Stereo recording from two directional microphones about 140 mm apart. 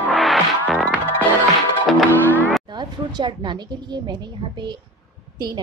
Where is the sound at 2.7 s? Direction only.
35° right (ahead or behind).